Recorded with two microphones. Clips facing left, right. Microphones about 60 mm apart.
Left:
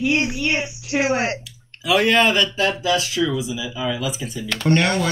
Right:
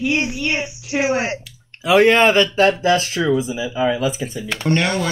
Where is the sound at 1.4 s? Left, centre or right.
Right.